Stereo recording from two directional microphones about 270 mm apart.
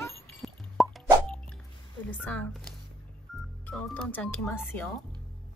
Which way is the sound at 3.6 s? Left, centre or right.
Centre.